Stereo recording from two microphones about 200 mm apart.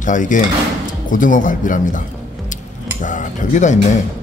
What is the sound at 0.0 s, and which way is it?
Speech, 40° left (ahead or behind).